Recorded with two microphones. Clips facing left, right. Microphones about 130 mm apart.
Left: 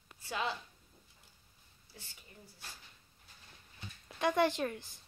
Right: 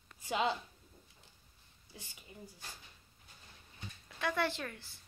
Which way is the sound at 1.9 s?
15° right (ahead or behind).